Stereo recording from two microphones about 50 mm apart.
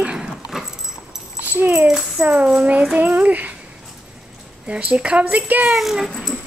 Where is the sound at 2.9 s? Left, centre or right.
Right.